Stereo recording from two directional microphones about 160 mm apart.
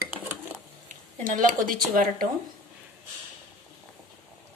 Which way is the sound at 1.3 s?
55° right (ahead or behind).